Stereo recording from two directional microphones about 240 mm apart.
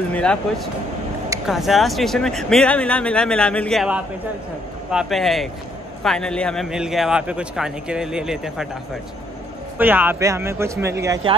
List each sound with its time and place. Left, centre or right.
0.1 s a man's voice: centre
9.8 s speech: centre